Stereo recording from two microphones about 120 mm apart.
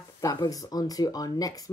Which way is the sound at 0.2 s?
30° left (ahead or behind).